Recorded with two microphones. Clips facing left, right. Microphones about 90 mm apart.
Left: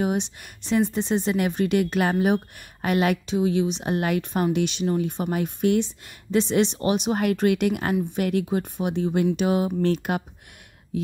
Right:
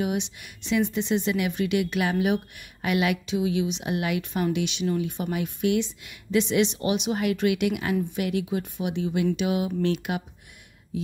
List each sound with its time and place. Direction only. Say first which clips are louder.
0.0 s a woman's voice: left 3 dB; 40° left (ahead or behind)